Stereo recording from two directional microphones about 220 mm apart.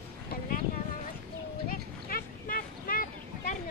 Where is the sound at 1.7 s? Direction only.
40° left (ahead or behind).